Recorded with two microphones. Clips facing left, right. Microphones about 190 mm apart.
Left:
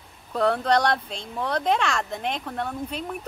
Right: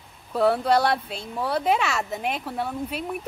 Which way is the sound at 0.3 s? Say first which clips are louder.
Right 1 dB; 5° right (ahead or behind).